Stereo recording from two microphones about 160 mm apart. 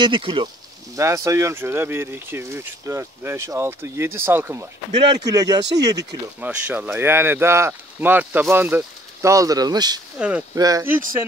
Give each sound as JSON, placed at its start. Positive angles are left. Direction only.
{"t": 0.0, "sound": "speech", "side_deg": -30}
{"t": 0.9, "sound": "speech", "side_deg": -20}
{"t": 4.9, "sound": "speech", "side_deg": -25}
{"t": 6.4, "sound": "speech", "side_deg": -10}
{"t": 10.1, "sound": "speech", "side_deg": -10}
{"t": 10.5, "sound": "speech", "side_deg": -20}